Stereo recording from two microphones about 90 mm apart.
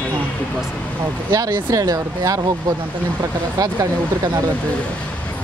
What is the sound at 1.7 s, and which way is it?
Speech, 40° right (ahead or behind).